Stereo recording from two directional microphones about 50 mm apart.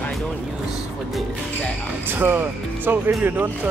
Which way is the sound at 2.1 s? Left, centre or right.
Right.